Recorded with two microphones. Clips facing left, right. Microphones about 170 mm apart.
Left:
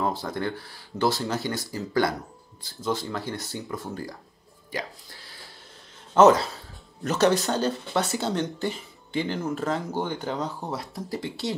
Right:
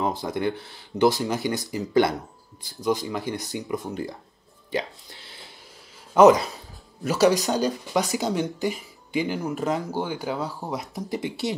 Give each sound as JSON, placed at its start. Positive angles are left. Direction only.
{"t": 0.0, "sound": "speech", "side_deg": -20}
{"t": 11.1, "sound": "speech", "side_deg": -20}